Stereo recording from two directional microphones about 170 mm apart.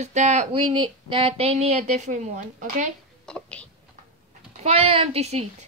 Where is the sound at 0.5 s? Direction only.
30° right (ahead or behind).